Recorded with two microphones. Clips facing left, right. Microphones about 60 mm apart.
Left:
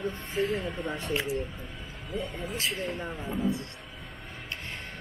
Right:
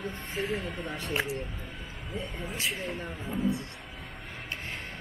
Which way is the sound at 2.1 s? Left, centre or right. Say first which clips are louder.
Left 3 dB; centre.